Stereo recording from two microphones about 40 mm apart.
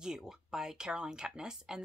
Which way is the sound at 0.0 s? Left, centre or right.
Centre.